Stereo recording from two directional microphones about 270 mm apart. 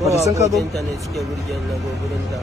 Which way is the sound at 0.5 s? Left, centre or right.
Centre.